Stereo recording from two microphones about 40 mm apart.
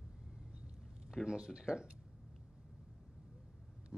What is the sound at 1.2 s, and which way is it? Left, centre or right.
Speech, centre.